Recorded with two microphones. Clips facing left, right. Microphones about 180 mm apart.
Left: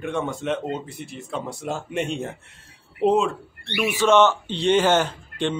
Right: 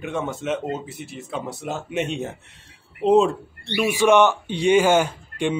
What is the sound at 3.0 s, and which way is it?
Speech, 20° left (ahead or behind).